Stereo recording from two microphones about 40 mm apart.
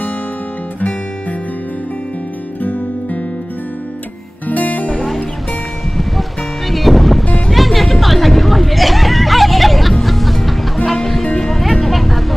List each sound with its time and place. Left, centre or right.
2.6 s music: left
4.5 s music: left
4.8 s music: centre
6.7 s music: centre